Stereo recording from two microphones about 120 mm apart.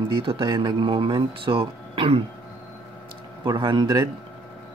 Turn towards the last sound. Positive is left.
turn(degrees=-35)  # may be behind; listen again after turning